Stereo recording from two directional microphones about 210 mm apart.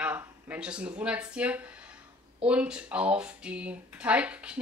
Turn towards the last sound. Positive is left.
turn(degrees=-5)  # may be behind; listen again after turning